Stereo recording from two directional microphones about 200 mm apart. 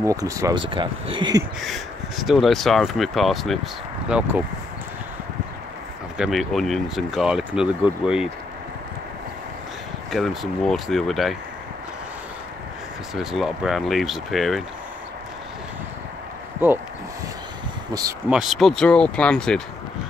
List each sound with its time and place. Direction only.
0.0 s speech: 15° right (ahead or behind)
1.6 s speech: centre (ahead or behind)
6.1 s speech: centre (ahead or behind)
10.1 s speech: centre (ahead or behind)
13.1 s speech: centre (ahead or behind)
16.6 s speech: 10° right (ahead or behind)
18.3 s speech: centre (ahead or behind)